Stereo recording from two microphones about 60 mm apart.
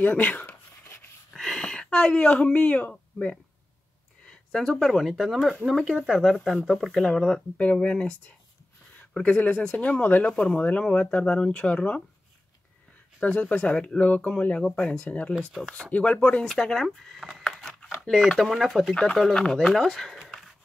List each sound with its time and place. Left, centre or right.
0.0 s speech: left
1.3 s speech: centre
4.3 s speech: centre
6.9 s speech: centre
9.2 s speech: centre
13.2 s speech: left
16.4 s speech: centre